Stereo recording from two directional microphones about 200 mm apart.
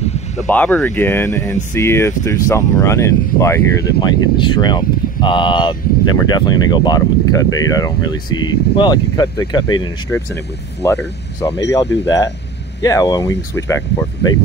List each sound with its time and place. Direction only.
0.0 s vehicle: 35° left (ahead or behind)
0.5 s speech: 10° left (ahead or behind)
12.8 s speech: 15° left (ahead or behind)